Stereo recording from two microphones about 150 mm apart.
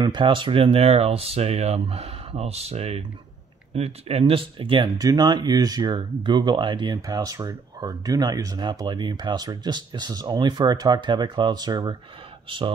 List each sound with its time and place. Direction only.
0.0 s speech: 35° right (ahead or behind)